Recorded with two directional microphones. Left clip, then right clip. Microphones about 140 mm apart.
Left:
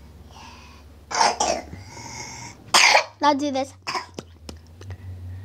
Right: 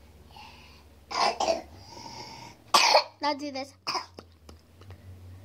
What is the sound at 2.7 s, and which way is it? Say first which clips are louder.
Cough: left 5 dB; 35° right (ahead or behind).